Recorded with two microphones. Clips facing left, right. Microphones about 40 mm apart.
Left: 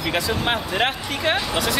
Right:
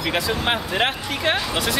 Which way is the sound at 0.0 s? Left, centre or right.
Centre.